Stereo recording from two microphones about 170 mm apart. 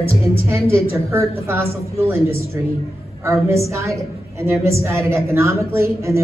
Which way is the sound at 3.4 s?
15° right (ahead or behind).